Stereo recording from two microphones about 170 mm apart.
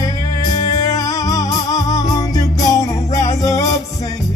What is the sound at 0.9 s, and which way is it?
Music, 20° left (ahead or behind).